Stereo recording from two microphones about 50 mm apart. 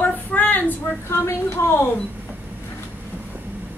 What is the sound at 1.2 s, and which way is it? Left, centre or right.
Speech, left.